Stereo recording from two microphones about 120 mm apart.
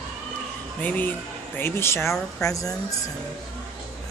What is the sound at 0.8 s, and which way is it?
Speech, 15° left (ahead or behind).